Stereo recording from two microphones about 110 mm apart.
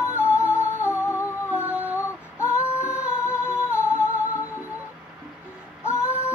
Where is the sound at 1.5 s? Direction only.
15° right (ahead or behind).